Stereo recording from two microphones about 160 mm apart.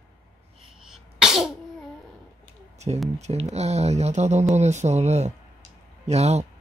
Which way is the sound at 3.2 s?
45° right (ahead or behind).